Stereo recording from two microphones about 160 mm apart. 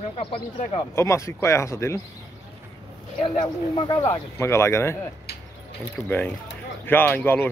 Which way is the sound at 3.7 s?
25° left (ahead or behind).